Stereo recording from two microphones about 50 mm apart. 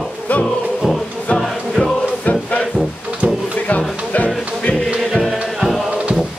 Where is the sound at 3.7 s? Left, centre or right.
Left.